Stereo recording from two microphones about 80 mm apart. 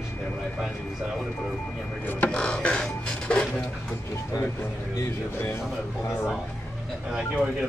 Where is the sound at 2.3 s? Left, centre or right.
Centre.